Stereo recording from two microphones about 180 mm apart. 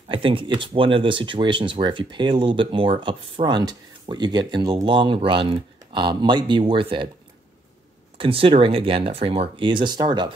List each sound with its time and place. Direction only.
0.1 s speech: 30° right (ahead or behind)
8.2 s speech: 30° right (ahead or behind)